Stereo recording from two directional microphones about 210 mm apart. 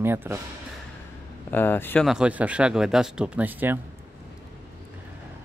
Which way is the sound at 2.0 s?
5° right (ahead or behind).